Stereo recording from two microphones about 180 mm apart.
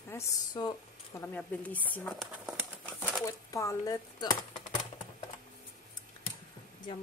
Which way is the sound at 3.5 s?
20° left (ahead or behind).